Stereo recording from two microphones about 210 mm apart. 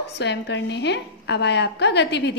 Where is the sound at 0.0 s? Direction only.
55° left (ahead or behind).